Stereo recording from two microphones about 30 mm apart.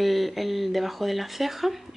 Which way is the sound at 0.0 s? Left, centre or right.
Centre.